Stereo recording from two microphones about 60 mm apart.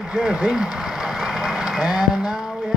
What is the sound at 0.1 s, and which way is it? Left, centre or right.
Speech, centre.